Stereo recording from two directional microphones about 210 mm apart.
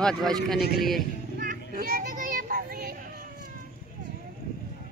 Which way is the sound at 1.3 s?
40° right (ahead or behind).